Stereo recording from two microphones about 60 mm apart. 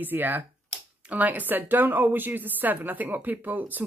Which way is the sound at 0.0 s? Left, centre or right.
Right.